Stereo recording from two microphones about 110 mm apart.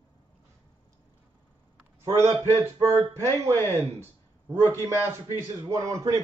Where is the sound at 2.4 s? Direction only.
25° right (ahead or behind).